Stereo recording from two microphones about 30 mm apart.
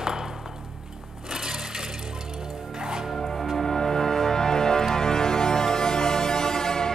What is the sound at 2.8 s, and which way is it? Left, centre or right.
Music, right.